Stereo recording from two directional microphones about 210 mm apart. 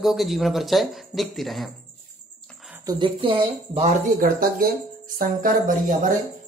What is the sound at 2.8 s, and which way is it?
Speech, 25° right (ahead or behind).